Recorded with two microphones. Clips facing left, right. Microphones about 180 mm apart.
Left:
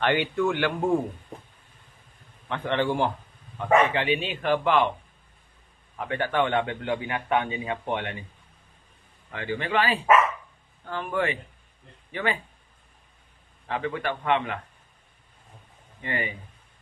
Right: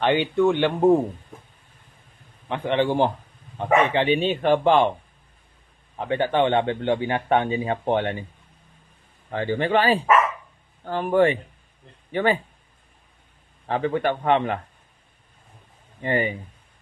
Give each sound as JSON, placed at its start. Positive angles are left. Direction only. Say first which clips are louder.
{"t": 0.0, "sound": "speech", "louder": "right 5 dB", "side_deg": -20}
{"t": 2.4, "sound": "a man's voice", "louder": "right 4 dB", "side_deg": -15}
{"t": 3.5, "sound": "speech", "louder": "right 2 dB", "side_deg": -30}
{"t": 5.9, "sound": "speech", "louder": "right 4 dB", "side_deg": -25}
{"t": 9.3, "sound": "a man's voice", "louder": "right 6 dB", "side_deg": -35}
{"t": 13.7, "sound": "a man's voice", "louder": "right 6 dB", "side_deg": -35}
{"t": 16.0, "sound": "a man's voice", "louder": "right 8 dB", "side_deg": -35}